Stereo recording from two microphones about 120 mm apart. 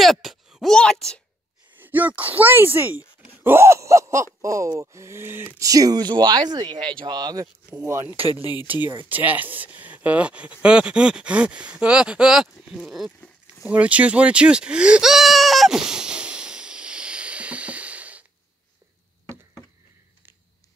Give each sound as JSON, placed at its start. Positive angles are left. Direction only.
{"t": 0.0, "sound": "a sound", "side_deg": 0}
{"t": 1.8, "sound": "speech", "side_deg": -15}
{"t": 3.3, "sound": "groan", "side_deg": -20}
{"t": 5.7, "sound": "speech", "side_deg": -30}
{"t": 7.7, "sound": "groan", "side_deg": -25}
{"t": 8.6, "sound": "speech", "side_deg": -15}
{"t": 13.7, "sound": "bleat", "side_deg": -10}